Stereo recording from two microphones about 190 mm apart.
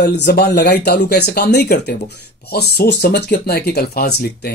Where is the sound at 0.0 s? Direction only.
60° left (ahead or behind).